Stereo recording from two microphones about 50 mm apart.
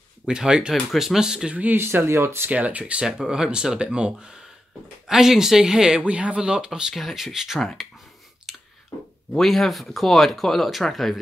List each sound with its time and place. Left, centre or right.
0.3 s speech: centre
1.5 s speech: right
1.8 s speech: right
2.5 s speech: right
3.1 s speech: centre
5.0 s speech: centre
5.9 s speech: right; by 7.8 s centre
8.5 s a sound: centre
9.3 s speech: centre